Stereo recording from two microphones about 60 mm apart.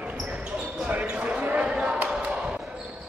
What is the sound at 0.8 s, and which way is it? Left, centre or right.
Basketball bounce, right.